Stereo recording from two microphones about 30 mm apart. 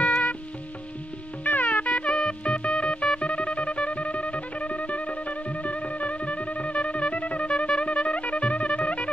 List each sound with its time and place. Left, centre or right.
1.4 s music: left
1.9 s music: left
7.4 s music: left